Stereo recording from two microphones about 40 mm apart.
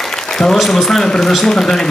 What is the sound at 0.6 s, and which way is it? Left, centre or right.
Speech, centre.